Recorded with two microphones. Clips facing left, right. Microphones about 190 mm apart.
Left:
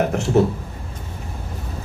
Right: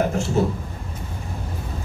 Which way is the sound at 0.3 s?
65° left (ahead or behind).